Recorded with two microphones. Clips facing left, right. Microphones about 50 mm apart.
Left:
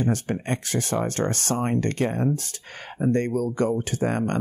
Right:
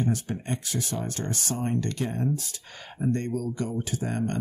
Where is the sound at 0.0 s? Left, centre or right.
Left.